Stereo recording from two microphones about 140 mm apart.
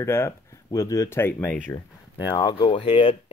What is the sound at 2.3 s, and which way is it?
Speech, 30° left (ahead or behind).